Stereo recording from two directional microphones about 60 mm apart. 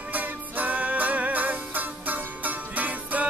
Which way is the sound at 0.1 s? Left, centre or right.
Right.